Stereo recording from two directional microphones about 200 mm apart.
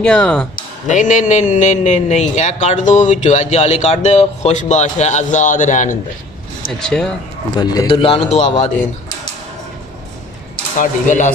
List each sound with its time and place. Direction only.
0.0 s speech: 5° left (ahead or behind)
0.6 s speech: 40° left (ahead or behind)
6.8 s speech: centre (ahead or behind)
7.5 s speech: 20° left (ahead or behind)
10.8 s speech: 40° left (ahead or behind)